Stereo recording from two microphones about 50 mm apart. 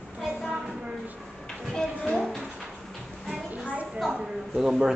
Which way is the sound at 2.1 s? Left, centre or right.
Centre.